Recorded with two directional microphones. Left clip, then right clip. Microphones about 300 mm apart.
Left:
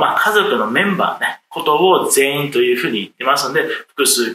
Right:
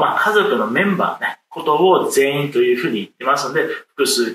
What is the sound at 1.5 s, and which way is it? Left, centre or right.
Speech, right.